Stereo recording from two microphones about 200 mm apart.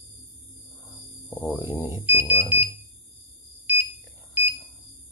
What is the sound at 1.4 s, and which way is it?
Speech, 10° right (ahead or behind).